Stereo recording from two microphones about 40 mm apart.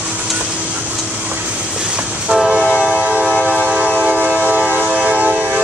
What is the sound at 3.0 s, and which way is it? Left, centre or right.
Music, right.